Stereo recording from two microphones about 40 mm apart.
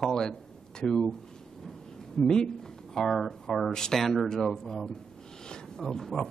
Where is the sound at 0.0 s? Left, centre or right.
Centre.